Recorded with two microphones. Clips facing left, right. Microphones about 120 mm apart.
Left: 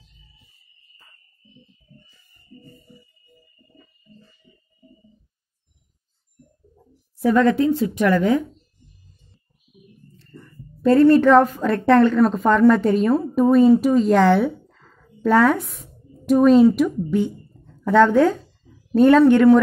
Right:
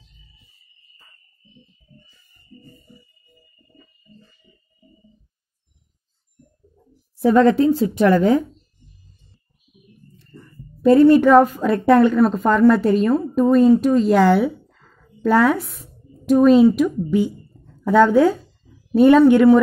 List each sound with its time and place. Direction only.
7.2 s a woman's voice: 30° right (ahead or behind)
10.8 s a woman's voice: 10° right (ahead or behind)
12.2 s a woman's voice: centre (ahead or behind)
17.8 s a sound: 10° right (ahead or behind)
19.0 s a woman's voice: 10° right (ahead or behind)